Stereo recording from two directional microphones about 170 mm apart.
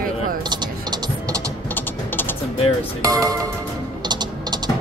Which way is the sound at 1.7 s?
10° left (ahead or behind).